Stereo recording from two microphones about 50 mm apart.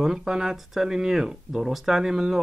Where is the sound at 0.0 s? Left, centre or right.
Centre.